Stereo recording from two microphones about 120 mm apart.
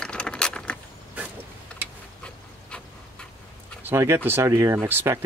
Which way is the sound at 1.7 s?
10° left (ahead or behind).